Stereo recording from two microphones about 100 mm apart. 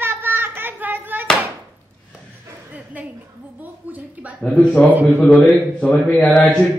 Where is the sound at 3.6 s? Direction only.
15° right (ahead or behind).